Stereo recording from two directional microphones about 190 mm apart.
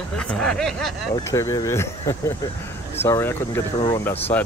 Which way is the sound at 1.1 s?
15° left (ahead or behind).